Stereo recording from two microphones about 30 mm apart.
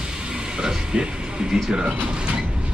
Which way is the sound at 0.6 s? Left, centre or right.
Right.